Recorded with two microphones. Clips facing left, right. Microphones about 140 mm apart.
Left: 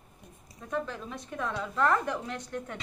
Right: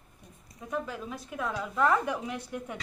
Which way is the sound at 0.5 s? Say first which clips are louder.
Left 1 dB; 5° right (ahead or behind).